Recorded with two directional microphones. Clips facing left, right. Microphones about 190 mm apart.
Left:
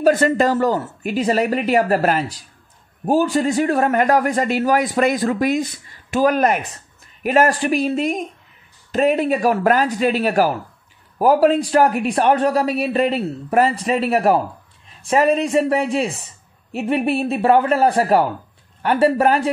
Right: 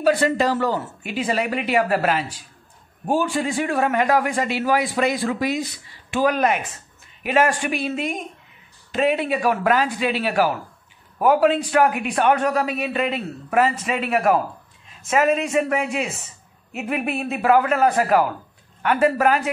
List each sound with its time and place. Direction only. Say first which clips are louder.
0.0 s a man's voice: left 3 dB; 45° left (ahead or behind)